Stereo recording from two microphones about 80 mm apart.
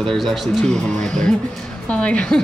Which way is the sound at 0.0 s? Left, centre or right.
Centre.